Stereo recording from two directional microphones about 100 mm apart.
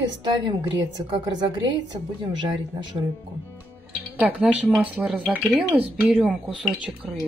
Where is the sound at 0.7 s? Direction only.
40° right (ahead or behind).